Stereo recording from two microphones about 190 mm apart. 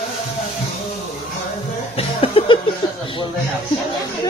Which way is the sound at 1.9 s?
30° left (ahead or behind).